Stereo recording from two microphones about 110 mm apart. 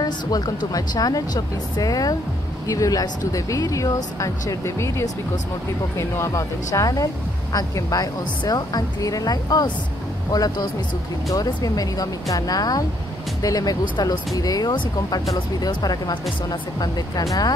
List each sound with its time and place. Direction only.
0.0 s speech: 35° left (ahead or behind)